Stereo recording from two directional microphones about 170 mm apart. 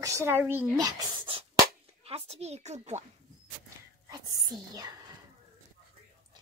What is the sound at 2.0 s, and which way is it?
Speech, 35° right (ahead or behind).